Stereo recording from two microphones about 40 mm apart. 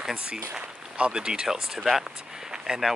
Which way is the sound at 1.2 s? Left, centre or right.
Centre.